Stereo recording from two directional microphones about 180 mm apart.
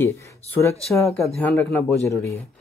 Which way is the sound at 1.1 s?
Centre (ahead or behind).